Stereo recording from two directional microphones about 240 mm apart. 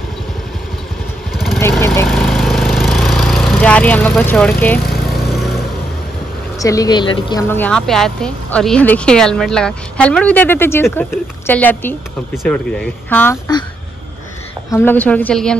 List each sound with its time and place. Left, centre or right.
1.3 s vehicle: centre
6.6 s speech: centre
14.7 s speech: centre